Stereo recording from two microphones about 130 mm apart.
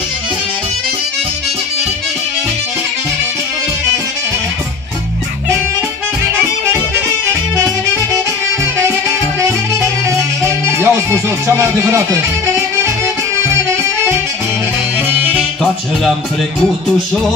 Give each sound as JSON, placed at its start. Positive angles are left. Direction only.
{"t": 9.4, "sound": "music", "side_deg": -25}
{"t": 15.0, "sound": "music", "side_deg": -15}
{"t": 15.3, "sound": "music", "side_deg": 5}